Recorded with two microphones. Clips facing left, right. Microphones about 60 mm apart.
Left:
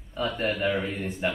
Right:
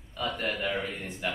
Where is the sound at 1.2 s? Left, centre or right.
Left.